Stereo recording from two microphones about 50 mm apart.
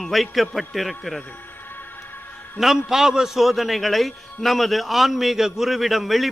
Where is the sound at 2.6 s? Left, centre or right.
Centre.